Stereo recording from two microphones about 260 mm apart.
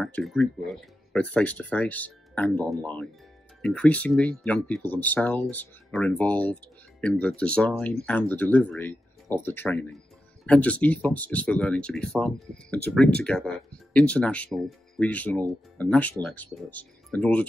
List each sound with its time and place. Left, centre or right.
0.0 s speech: centre